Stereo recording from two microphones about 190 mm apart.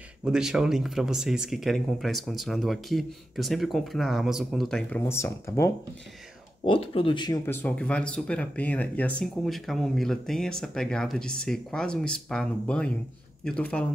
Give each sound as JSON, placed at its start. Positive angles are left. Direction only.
{"t": 0.2, "sound": "speech", "side_deg": -5}
{"t": 5.0, "sound": "speech", "side_deg": 15}
{"t": 6.6, "sound": "speech", "side_deg": 30}
{"t": 7.4, "sound": "speech", "side_deg": 10}